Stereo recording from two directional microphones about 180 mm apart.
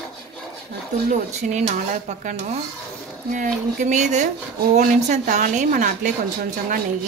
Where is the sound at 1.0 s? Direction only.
45° right (ahead or behind).